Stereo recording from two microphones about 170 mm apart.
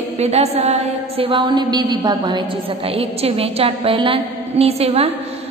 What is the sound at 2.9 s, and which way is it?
A man's voice, 35° right (ahead or behind).